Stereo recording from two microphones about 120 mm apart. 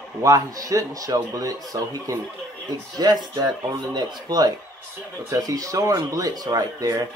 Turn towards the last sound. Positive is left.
turn(degrees=-30)  # may be behind; listen again after turning